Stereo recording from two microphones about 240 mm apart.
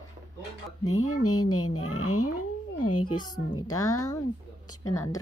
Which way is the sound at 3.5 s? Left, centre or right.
Left.